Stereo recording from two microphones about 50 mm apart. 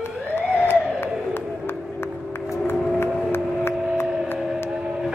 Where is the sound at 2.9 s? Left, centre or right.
Left.